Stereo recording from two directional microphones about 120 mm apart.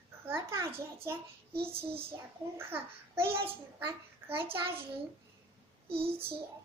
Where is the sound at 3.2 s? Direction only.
50° right (ahead or behind).